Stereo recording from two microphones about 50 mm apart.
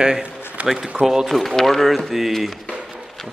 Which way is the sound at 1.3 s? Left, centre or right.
Centre.